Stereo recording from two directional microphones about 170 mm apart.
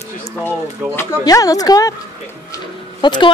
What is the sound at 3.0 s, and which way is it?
Speech, 30° left (ahead or behind).